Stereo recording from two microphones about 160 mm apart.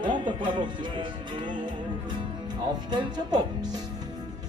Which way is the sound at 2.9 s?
25° right (ahead or behind).